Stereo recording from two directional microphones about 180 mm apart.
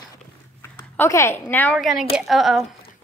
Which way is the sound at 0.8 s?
15° left (ahead or behind).